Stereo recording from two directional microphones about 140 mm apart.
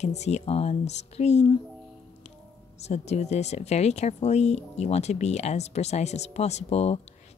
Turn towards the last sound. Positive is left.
turn(degrees=50)  # may be behind; listen again after turning